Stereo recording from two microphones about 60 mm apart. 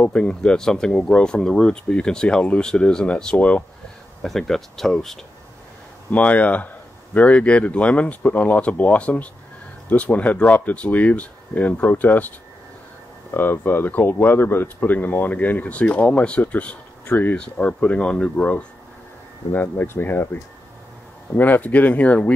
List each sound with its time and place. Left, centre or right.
0.0 s speech: centre
4.2 s speech: centre
6.1 s speech: left
13.3 s speech: left
19.5 s speech: left
21.4 s speech: left